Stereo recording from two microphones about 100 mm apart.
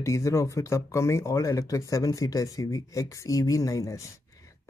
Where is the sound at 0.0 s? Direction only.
30° left (ahead or behind).